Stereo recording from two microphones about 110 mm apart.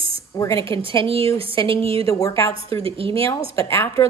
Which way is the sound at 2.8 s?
55° right (ahead or behind).